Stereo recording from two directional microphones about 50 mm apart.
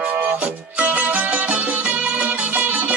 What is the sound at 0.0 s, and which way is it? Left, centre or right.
Music, right.